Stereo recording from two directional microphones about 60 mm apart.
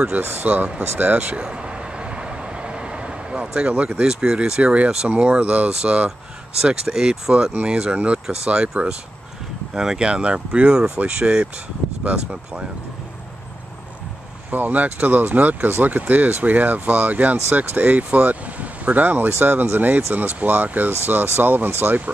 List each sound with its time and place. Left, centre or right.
0.2 s speech: right
0.9 s vehicle: right
4.0 s speech: centre
14.5 s speech: right